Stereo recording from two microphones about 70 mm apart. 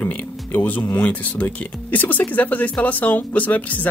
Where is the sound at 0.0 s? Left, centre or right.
Left.